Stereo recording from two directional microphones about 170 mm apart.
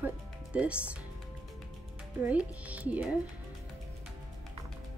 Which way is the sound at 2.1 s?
10° right (ahead or behind).